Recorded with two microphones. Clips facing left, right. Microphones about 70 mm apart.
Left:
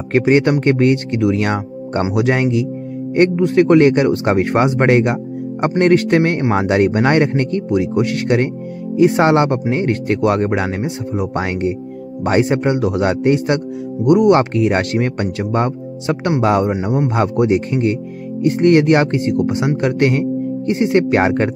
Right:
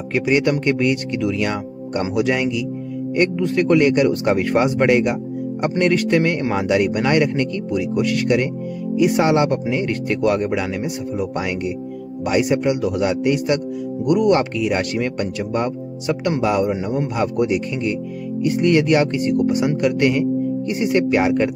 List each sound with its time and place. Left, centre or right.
0.1 s speech: left